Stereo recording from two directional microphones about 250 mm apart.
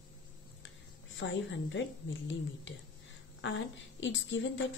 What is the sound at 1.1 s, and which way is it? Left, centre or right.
A woman's voice, left.